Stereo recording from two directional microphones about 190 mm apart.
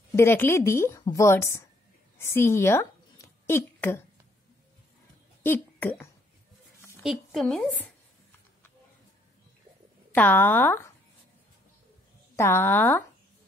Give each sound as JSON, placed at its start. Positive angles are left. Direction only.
{"t": 0.1, "sound": "a woman's voice", "side_deg": 10}
{"t": 2.1, "sound": "a sound", "side_deg": 15}
{"t": 5.4, "sound": "speech", "side_deg": 10}
{"t": 7.0, "sound": "a woman's voice", "side_deg": 0}
{"t": 10.1, "sound": "a woman's voice", "side_deg": 10}
{"t": 12.4, "sound": "a woman's voice", "side_deg": 15}